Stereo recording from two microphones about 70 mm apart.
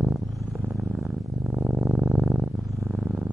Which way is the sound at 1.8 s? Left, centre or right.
Centre.